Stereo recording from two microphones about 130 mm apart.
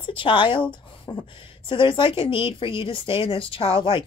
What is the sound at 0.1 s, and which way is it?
Speech, 40° left (ahead or behind).